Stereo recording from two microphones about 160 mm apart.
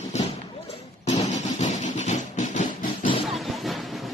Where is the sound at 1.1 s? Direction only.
45° left (ahead or behind).